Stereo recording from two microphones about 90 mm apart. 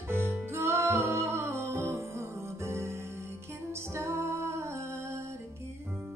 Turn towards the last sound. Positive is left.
turn(degrees=-30)  # may be behind; listen again after turning